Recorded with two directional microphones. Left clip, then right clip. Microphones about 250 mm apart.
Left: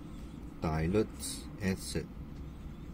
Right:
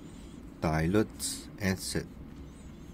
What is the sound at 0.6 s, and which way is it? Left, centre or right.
Speech, right.